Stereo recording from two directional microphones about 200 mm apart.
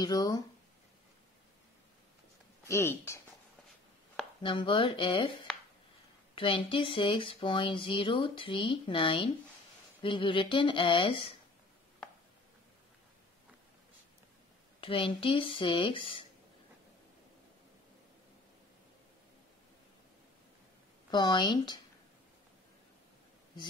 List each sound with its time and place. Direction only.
0.0 s speech: 20° left (ahead or behind)
2.6 s speech: 15° left (ahead or behind)
4.4 s speech: 25° left (ahead or behind)
14.8 s speech: 25° left (ahead or behind)
21.1 s speech: 20° left (ahead or behind)